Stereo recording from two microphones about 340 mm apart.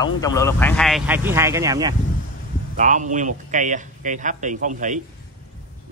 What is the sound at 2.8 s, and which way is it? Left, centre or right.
Speech, right.